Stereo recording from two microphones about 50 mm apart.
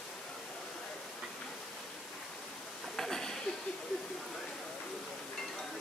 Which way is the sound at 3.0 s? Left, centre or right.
Centre.